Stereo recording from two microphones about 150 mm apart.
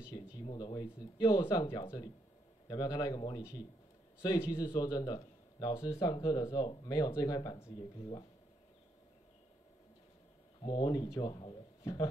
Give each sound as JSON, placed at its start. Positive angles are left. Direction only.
{"t": 0.1, "sound": "a sound", "side_deg": 25}
{"t": 0.5, "sound": "a man's voice", "side_deg": 25}
{"t": 2.7, "sound": "a man's voice", "side_deg": 25}
{"t": 10.6, "sound": "a man's voice", "side_deg": 30}